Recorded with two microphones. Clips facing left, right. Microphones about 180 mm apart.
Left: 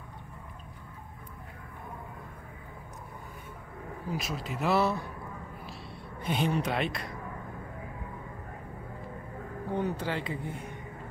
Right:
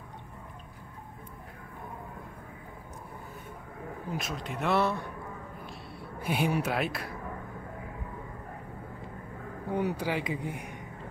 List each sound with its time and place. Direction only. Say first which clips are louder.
4.1 s speech: left 1 dB; centre (ahead or behind)
6.2 s speech: even; 10° right (ahead or behind)
9.7 s speech: right 2 dB; 10° right (ahead or behind)